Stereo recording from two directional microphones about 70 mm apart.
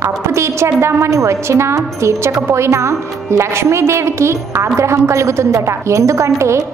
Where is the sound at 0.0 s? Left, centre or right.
Right.